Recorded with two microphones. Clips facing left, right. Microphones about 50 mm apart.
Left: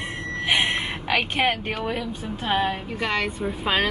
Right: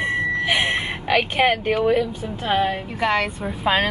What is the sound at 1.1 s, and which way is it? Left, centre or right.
Speech, centre.